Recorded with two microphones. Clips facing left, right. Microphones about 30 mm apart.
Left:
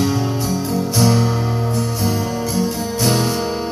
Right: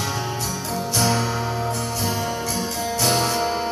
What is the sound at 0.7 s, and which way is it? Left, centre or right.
Music, centre.